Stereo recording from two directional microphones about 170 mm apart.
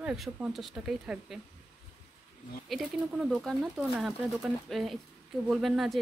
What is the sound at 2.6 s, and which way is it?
Speech, centre (ahead or behind).